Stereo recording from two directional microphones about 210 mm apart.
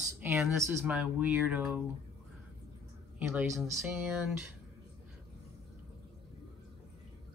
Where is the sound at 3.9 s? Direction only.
5° right (ahead or behind).